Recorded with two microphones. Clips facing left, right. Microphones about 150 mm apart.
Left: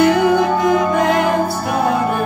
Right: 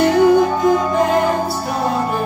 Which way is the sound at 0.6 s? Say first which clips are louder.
Even; 75° left (ahead or behind).